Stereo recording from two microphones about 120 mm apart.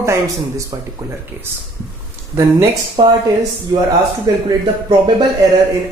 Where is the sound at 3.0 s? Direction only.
40° right (ahead or behind).